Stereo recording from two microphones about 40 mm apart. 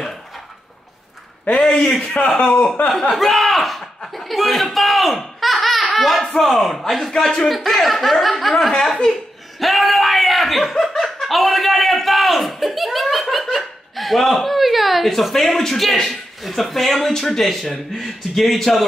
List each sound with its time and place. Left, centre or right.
1.6 s a man's voice: centre
2.0 s a man's voice: left
3.2 s a sound: centre
4.7 s laughter: centre
6.4 s speech: centre
9.6 s a sound: centre
11.0 s chuckle: centre
17.1 s speech: centre